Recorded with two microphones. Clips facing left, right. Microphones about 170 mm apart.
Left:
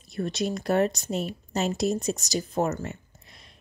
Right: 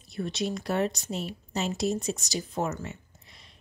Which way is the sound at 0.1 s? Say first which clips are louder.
Left 3 dB; 45° left (ahead or behind).